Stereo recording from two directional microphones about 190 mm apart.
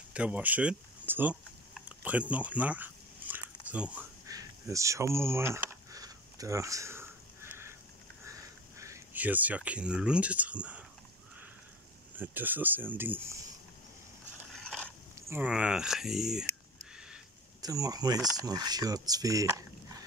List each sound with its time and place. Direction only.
0.1 s typing: 5° right (ahead or behind)
4.3 s a sound: 15° right (ahead or behind)
8.3 s speech: 15° right (ahead or behind)
12.2 s speech: 10° right (ahead or behind)
14.5 s a sound: 5° left (ahead or behind)
15.1 s speech: 10° right (ahead or behind)
17.6 s speech: 20° right (ahead or behind)